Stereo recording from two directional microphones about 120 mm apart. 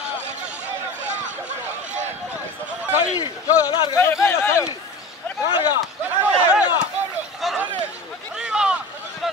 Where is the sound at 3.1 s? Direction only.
30° left (ahead or behind).